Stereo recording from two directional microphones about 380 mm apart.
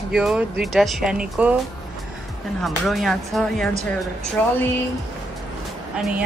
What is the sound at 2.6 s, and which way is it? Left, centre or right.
Speech, centre.